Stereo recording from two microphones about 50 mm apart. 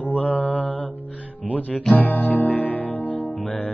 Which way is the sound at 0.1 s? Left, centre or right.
Left.